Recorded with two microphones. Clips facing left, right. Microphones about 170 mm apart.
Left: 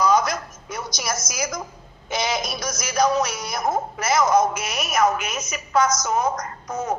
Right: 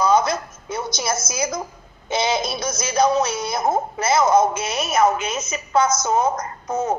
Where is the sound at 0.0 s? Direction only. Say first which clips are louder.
Right 2 dB; 25° right (ahead or behind).